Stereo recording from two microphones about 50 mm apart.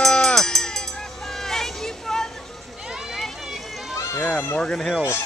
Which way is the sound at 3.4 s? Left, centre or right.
Centre.